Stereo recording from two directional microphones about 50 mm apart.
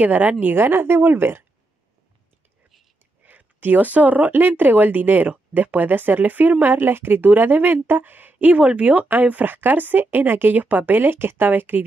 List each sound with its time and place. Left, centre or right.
0.0 s speech: right
0.6 s speech: right
3.3 s speech: right